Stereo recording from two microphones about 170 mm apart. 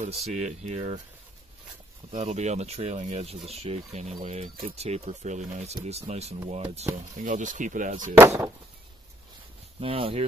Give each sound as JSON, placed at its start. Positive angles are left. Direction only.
{"t": 0.2, "sound": "speech", "side_deg": -40}
{"t": 2.1, "sound": "speech", "side_deg": -40}
{"t": 8.2, "sound": "speech", "side_deg": -15}
{"t": 9.8, "sound": "speech", "side_deg": -35}